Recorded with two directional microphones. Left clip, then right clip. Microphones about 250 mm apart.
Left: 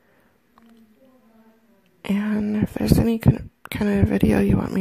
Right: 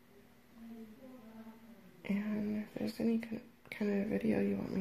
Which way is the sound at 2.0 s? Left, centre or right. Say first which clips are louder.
Left 14 dB; left.